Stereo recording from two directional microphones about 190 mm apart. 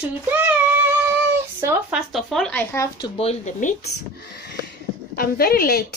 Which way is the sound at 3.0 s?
30° left (ahead or behind).